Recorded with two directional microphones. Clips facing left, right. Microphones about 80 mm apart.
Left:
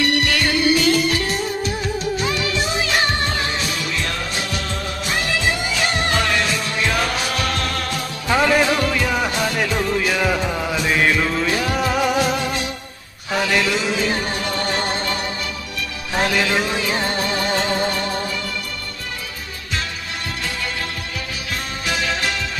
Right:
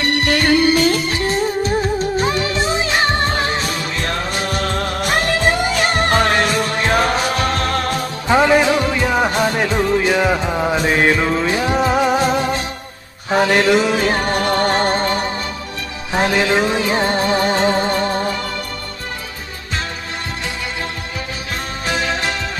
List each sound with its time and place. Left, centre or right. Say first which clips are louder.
0.0 s music: right 2 dB; right
8.3 s music: right 4 dB; right
16.1 s music: right 4 dB; right
21.8 s music: right 3 dB; right